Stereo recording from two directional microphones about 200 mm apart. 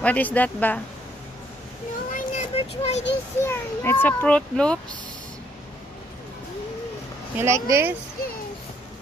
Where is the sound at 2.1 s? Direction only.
35° left (ahead or behind).